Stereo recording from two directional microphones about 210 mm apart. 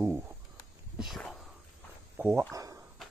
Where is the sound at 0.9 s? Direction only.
Centre (ahead or behind).